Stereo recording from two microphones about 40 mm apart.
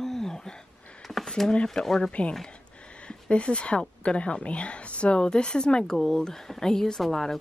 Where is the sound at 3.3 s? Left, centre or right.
Left; by 7.4 s centre.